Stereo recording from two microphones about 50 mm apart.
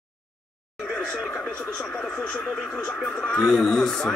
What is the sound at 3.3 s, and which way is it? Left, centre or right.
Speech, centre.